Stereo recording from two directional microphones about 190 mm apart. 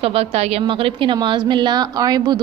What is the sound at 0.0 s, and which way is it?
A woman's voice, 30° right (ahead or behind).